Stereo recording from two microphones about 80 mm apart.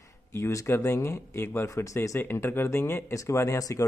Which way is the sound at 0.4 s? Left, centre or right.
Left.